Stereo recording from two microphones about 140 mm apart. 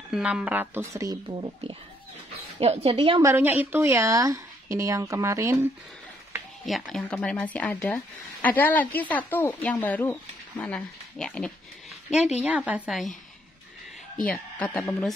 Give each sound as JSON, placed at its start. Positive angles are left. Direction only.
{"t": 0.1, "sound": "speech", "side_deg": -5}
{"t": 1.4, "sound": "a woman's voice", "side_deg": -35}
{"t": 3.2, "sound": "a woman's voice", "side_deg": -15}
{"t": 6.6, "sound": "speech", "side_deg": 0}
{"t": 12.4, "sound": "speech", "side_deg": -10}
{"t": 14.2, "sound": "speech", "side_deg": 10}